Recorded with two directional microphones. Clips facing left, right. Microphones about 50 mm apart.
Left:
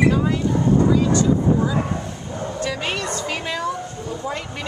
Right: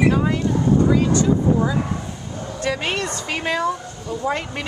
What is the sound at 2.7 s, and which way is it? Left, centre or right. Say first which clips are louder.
A woman's voice: right 5 dB; centre.